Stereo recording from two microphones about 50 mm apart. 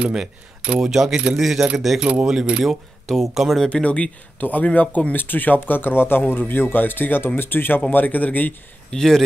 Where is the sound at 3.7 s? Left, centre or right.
Left.